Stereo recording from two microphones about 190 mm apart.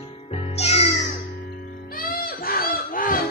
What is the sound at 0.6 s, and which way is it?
Music, 35° left (ahead or behind).